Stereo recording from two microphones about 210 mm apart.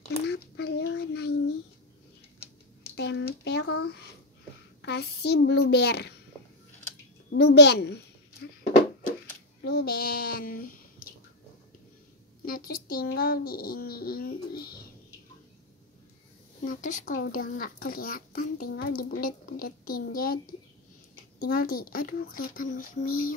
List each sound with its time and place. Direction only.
0.3 s child singing: 50° left (ahead or behind)
3.0 s a sound: 55° left (ahead or behind)
4.8 s a child's voice: 50° left (ahead or behind)
7.2 s a child's voice: 50° left (ahead or behind)
9.6 s speech: 50° left (ahead or behind)
12.4 s a child's voice: 45° left (ahead or behind)
16.6 s a child's voice: 40° left (ahead or behind)